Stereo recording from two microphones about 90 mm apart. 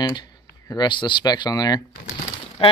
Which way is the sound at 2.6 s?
90° left.